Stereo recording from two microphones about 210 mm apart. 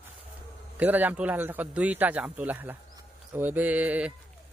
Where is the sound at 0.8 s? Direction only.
10° right (ahead or behind).